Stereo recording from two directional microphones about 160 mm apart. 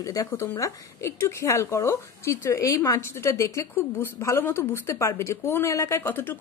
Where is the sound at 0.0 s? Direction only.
20° left (ahead or behind).